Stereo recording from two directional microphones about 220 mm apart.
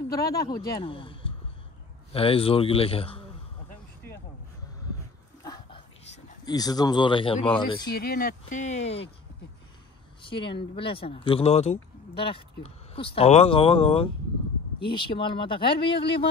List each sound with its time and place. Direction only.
0.1 s speech: 15° left (ahead or behind)
5.4 s dog: 15° left (ahead or behind)
6.4 s speech: 15° left (ahead or behind)
7.9 s speech: 45° left (ahead or behind); by 9.1 s 25° left (ahead or behind)
10.2 s speech: 20° left (ahead or behind)